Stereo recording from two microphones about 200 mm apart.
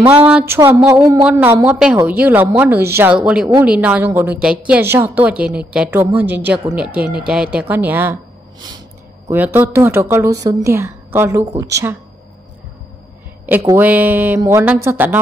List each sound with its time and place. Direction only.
0.3 s a woman's voice: 5° right (ahead or behind)
8.5 s snort: 20° right (ahead or behind)
9.3 s a woman's voice: 10° right (ahead or behind)
13.5 s a woman's voice: 10° right (ahead or behind)